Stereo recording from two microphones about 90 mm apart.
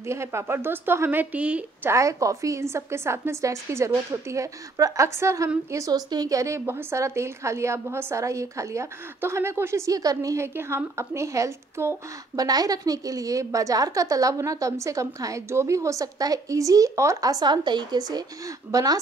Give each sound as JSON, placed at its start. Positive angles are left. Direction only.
{"t": 0.0, "sound": "a woman's voice", "side_deg": -30}
{"t": 1.3, "sound": "a woman's voice", "side_deg": -15}
{"t": 1.9, "sound": "a woman's voice", "side_deg": -35}
{"t": 12.4, "sound": "a woman's voice", "side_deg": -45}